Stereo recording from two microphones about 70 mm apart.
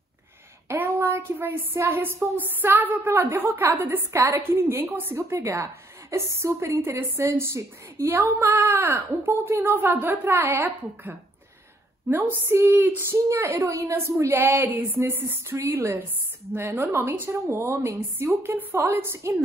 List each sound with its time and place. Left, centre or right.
0.7 s speech: right
4.1 s speech: right
5.1 s a woman's voice: right
15.7 s speech: right